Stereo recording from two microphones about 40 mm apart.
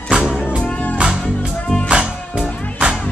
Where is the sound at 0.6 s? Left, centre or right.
Left.